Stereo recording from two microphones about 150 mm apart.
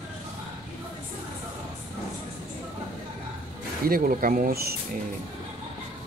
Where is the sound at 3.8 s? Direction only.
75° right (ahead or behind); by 4.8 s 90° right.